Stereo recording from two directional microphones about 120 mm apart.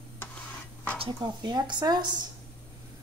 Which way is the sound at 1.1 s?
40° right (ahead or behind).